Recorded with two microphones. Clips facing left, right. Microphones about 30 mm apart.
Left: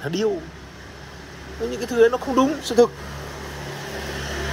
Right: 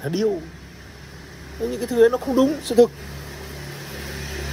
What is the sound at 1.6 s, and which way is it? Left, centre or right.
Speech, left.